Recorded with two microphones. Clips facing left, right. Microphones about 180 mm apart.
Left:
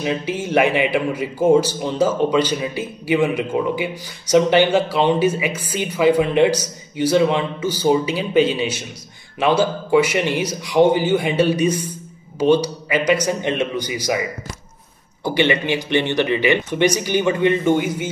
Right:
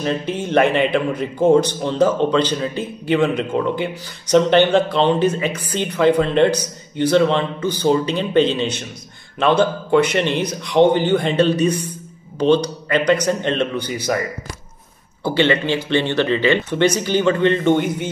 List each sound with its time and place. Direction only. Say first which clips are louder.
0.0 s a man's voice: right 1 dB; 10° left (ahead or behind)
15.2 s a man's voice: right 1 dB; 15° left (ahead or behind)